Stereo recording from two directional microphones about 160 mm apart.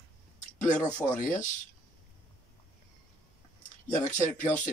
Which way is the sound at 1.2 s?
50° left (ahead or behind).